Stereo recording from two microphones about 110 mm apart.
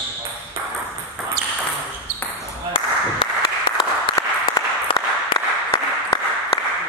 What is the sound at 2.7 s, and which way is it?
Applause, 55° left (ahead or behind).